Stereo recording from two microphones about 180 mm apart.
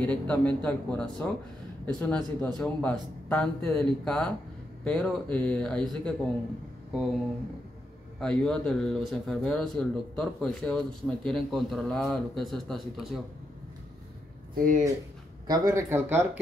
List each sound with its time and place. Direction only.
0.0 s speech: 5° left (ahead or behind)
8.2 s speech: 5° left (ahead or behind)
14.5 s speech: 50° right (ahead or behind)
15.4 s speech: 20° right (ahead or behind)